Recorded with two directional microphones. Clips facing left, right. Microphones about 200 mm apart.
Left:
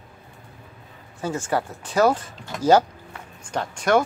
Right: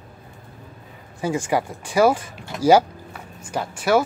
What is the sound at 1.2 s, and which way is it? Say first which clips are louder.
Speech: right 3 dB; 15° right (ahead or behind).